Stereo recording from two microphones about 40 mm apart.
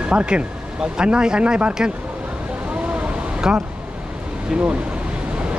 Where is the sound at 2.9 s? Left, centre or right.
Right.